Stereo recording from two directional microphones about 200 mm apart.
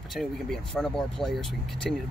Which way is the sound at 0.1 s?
Centre (ahead or behind).